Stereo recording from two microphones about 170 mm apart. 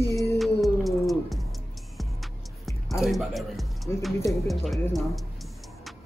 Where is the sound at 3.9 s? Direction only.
15° left (ahead or behind).